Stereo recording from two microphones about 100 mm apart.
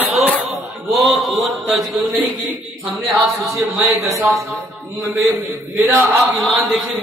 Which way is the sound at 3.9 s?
30° right (ahead or behind).